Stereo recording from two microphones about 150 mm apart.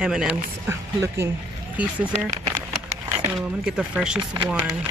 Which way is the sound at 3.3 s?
5° right (ahead or behind).